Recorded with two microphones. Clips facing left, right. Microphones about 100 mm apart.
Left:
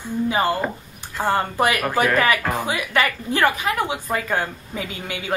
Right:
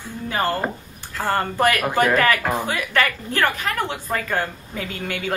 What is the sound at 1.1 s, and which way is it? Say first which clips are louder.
A woman's voice: left 1 dB; 15° left (ahead or behind).